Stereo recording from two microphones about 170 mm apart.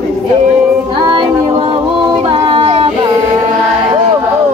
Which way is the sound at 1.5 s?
30° right (ahead or behind).